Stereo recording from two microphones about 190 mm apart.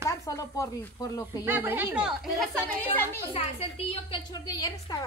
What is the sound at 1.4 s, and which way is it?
Speech, 10° right (ahead or behind).